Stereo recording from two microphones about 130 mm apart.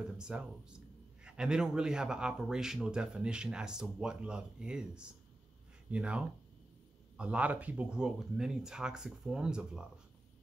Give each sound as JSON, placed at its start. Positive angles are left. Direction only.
{"t": 0.2, "sound": "a man's voice", "side_deg": -5}